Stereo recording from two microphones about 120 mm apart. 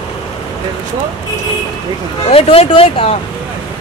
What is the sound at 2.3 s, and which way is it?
Speech, 55° left (ahead or behind).